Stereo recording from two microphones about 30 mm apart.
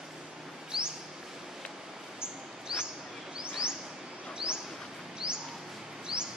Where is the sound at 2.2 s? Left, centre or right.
Right.